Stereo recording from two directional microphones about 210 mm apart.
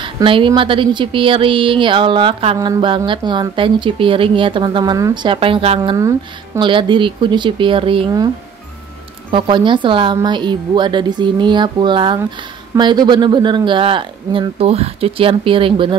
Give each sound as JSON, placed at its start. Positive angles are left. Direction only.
{"t": 0.0, "sound": "a woman's voice", "side_deg": -25}
{"t": 5.9, "sound": "a woman's voice", "side_deg": -15}
{"t": 9.3, "sound": "a woman's voice", "side_deg": -20}